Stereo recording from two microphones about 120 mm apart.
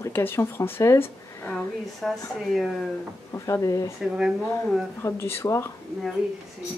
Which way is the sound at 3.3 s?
25° left (ahead or behind).